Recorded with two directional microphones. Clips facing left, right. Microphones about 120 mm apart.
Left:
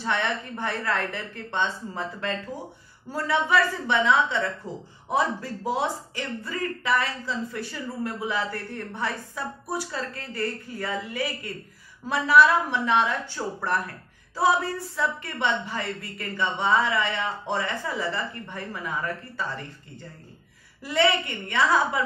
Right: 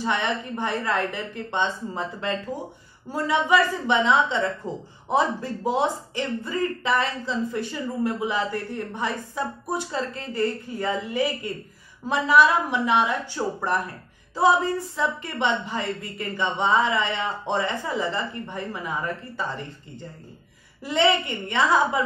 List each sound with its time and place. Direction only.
0.0 s a woman's voice: 15° right (ahead or behind)
20.8 s speech: 20° right (ahead or behind)